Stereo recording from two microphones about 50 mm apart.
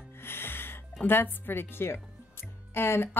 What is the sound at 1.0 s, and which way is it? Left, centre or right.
Speech, left.